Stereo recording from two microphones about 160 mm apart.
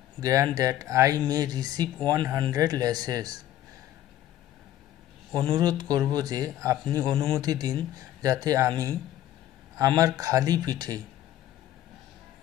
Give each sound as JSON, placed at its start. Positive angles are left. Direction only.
{"t": 0.2, "sound": "speech", "side_deg": -20}
{"t": 5.5, "sound": "speech", "side_deg": -25}